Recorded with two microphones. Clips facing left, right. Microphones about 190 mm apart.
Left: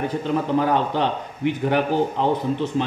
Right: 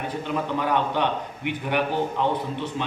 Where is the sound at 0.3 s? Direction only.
40° left (ahead or behind).